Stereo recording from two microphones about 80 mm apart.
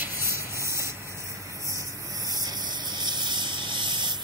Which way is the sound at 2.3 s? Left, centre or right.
Right.